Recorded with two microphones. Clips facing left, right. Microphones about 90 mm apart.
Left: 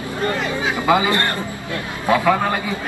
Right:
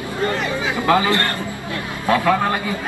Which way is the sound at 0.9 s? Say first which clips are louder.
Even; 15° left (ahead or behind).